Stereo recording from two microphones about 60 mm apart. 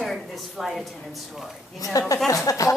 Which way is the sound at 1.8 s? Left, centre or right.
Left.